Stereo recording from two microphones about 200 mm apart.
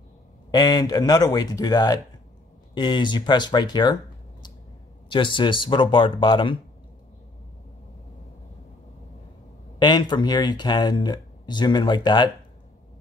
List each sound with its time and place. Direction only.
0.5 s speech: 20° left (ahead or behind)
9.8 s speech: 20° left (ahead or behind)